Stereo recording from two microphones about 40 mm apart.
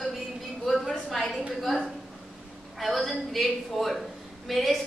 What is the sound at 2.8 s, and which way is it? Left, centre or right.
A woman's voice, centre.